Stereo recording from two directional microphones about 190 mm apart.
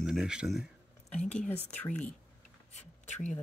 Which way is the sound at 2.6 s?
35° left (ahead or behind).